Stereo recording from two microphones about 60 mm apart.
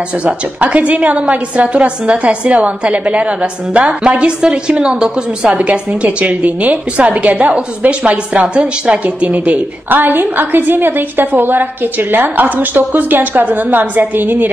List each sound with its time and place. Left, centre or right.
0.2 s a woman's voice: right
5.6 s a woman's voice: right